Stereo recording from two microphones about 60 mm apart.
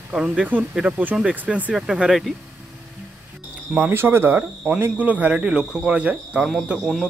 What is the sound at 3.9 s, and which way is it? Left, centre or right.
Speech, right.